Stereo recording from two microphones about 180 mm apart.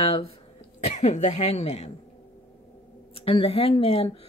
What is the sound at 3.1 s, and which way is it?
Speech, 30° left (ahead or behind).